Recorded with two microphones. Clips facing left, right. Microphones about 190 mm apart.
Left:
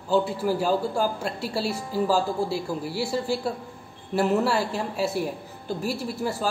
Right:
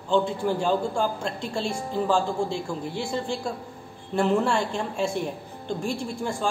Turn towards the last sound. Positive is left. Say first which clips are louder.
# left 1 dB
turn(degrees=5)  # may be behind; listen again after turning